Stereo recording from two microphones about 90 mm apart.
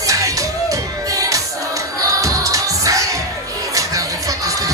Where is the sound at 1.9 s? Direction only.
40° right (ahead or behind).